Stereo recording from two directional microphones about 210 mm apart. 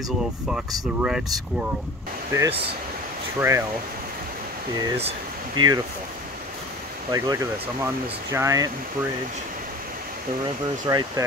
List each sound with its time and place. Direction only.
2.3 s speech: 15° right (ahead or behind)
4.7 s speech: 15° right (ahead or behind)
5.6 s speech: 80° right
7.1 s speech: 15° right (ahead or behind)
10.9 s speech: 15° right (ahead or behind)